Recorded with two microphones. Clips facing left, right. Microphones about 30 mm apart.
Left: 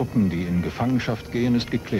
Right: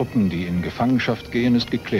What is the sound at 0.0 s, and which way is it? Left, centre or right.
Speech, right.